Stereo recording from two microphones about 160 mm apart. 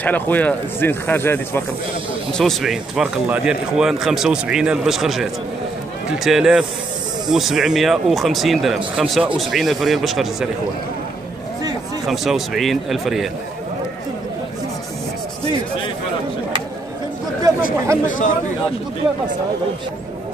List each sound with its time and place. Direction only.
0.0 s speech: 10° left (ahead or behind)
2.3 s speech: centre (ahead or behind)
12.1 s speech: centre (ahead or behind)
17.5 s chatter: 20° right (ahead or behind)
18.0 s speech: 55° left (ahead or behind)